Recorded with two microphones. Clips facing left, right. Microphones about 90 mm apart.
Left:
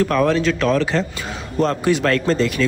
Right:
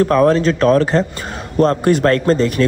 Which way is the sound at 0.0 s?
35° right (ahead or behind).